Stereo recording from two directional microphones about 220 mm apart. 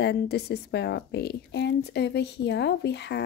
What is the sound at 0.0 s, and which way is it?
A woman's voice, 50° left (ahead or behind).